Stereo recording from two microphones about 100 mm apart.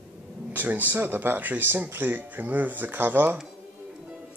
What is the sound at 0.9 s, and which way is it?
Speech, 20° right (ahead or behind).